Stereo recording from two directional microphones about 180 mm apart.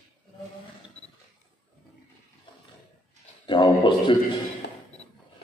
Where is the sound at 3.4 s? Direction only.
25° left (ahead or behind).